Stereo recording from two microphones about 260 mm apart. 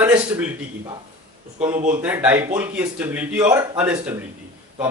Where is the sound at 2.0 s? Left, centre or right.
Centre.